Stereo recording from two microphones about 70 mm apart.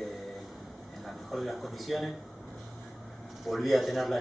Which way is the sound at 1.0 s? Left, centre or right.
Centre.